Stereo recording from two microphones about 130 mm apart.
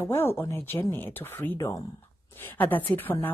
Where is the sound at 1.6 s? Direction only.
25° left (ahead or behind).